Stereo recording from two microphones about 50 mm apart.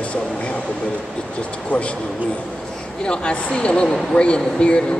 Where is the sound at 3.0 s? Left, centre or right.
Centre.